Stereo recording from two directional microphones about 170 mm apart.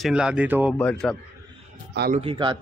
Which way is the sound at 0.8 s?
5° left (ahead or behind).